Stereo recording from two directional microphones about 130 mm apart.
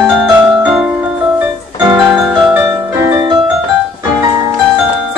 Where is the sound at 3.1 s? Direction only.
35° right (ahead or behind).